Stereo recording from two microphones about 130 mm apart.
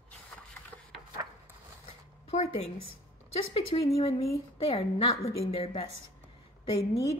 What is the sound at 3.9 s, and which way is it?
A woman's voice, 50° left (ahead or behind).